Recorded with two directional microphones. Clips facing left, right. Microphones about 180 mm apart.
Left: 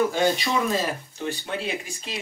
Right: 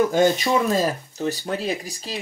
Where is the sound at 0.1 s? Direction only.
45° right (ahead or behind).